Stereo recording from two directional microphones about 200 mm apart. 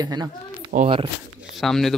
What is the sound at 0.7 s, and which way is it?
Speech, 30° right (ahead or behind).